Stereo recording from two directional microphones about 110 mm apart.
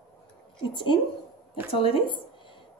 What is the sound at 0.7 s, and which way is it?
Speech, 45° left (ahead or behind).